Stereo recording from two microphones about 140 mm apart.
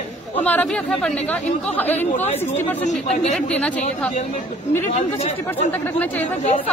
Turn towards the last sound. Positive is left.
turn(degrees=50)  # may be behind; listen again after turning